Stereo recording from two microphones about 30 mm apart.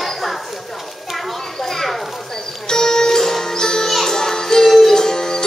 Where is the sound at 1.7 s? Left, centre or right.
Centre.